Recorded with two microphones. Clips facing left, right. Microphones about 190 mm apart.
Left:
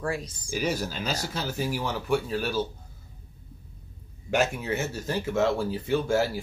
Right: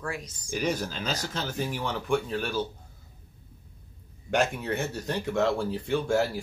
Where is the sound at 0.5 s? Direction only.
5° left (ahead or behind).